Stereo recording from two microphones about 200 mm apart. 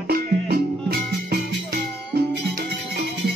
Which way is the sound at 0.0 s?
50° right (ahead or behind).